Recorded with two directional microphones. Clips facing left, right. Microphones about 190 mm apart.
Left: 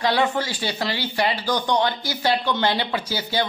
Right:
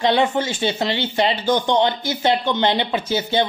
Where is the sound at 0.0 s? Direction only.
20° right (ahead or behind).